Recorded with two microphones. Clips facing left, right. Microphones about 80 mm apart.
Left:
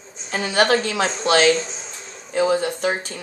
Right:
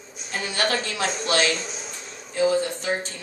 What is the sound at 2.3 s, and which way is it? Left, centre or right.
Speech, left.